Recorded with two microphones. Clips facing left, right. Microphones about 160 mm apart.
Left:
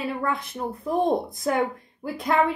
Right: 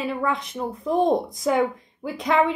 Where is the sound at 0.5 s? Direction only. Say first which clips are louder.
Right 3 dB; 5° left (ahead or behind).